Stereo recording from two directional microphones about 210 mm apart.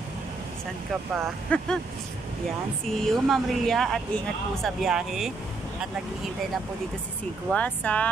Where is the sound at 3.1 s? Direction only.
Centre (ahead or behind).